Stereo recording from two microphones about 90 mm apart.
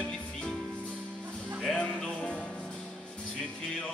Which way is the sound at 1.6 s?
10° left (ahead or behind).